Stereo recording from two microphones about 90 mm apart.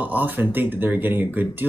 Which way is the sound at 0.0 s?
20° right (ahead or behind).